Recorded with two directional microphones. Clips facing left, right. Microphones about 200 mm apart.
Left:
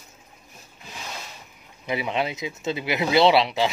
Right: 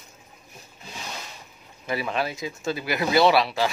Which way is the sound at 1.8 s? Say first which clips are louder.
Left 1 dB; 20° left (ahead or behind).